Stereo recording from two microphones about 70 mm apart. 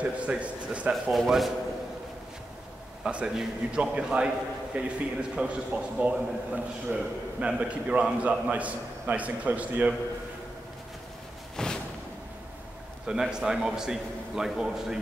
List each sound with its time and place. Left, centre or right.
0.0 s a man's voice: centre
1.1 s a man's voice: centre
3.0 s a man's voice: centre
11.5 s a sound: centre
13.0 s a man's voice: centre